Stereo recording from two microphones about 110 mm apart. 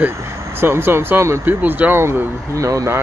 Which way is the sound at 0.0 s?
25° right (ahead or behind).